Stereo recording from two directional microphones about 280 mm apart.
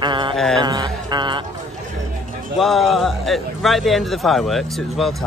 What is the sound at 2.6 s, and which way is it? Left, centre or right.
Speech, centre.